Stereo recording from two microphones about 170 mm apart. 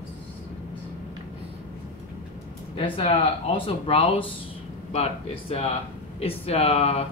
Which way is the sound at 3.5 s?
35° left (ahead or behind).